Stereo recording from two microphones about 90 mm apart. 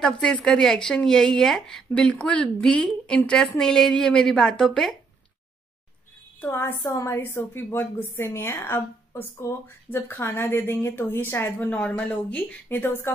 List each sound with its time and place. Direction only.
0.0 s speech: 10° left (ahead or behind)
6.4 s a woman's voice: 25° left (ahead or behind)